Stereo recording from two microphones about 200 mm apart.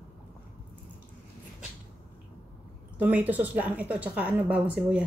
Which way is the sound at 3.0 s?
10° right (ahead or behind).